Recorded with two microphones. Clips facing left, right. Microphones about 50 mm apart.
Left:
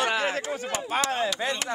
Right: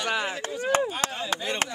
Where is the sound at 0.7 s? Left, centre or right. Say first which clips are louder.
Right 8 dB; right.